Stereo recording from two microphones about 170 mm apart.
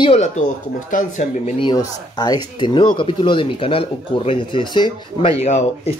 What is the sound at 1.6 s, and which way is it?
Speech, 25° left (ahead or behind).